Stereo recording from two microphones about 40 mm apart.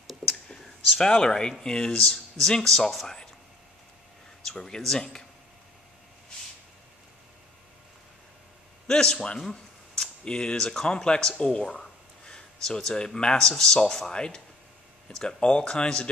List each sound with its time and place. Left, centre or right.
0.0 s whispering: centre
0.9 s speech: centre
2.0 s speech: centre
4.5 s speech: centre
8.8 s speech: centre
9.4 s a sound: centre
10.2 s speech: centre